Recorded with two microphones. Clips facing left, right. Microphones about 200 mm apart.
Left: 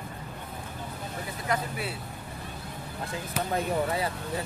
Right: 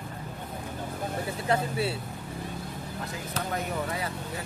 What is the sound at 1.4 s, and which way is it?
Speech, 30° right (ahead or behind).